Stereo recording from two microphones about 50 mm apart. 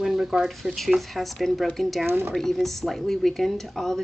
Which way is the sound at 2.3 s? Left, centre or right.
Centre.